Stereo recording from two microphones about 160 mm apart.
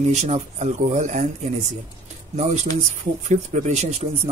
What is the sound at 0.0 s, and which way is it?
A man's voice, 45° right (ahead or behind).